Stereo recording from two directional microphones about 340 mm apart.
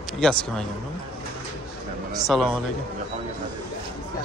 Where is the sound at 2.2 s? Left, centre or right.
Centre.